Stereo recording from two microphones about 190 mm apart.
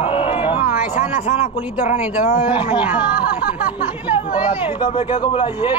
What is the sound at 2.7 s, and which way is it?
Speech, 10° right (ahead or behind).